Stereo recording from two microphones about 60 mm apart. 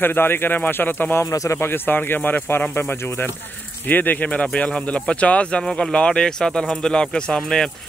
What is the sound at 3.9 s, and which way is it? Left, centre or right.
Speech, left.